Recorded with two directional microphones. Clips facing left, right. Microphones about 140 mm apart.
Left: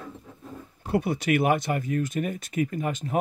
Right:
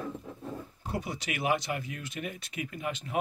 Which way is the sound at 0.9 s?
55° left (ahead or behind).